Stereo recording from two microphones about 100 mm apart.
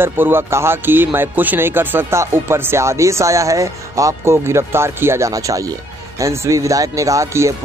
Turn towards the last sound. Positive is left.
turn(degrees=-30)  # may be behind; listen again after turning